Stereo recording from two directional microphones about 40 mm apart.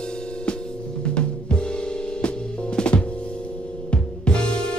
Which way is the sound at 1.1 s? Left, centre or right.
Left.